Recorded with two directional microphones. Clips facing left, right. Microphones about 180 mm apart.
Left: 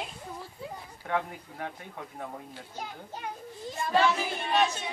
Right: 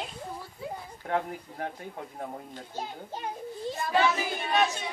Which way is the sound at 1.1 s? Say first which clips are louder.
Right 1 dB; 35° right (ahead or behind).